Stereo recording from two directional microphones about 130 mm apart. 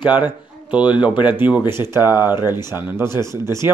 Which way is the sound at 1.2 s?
10° right (ahead or behind).